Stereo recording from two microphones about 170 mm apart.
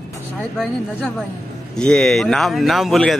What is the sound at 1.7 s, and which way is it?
Speech, 5° left (ahead or behind).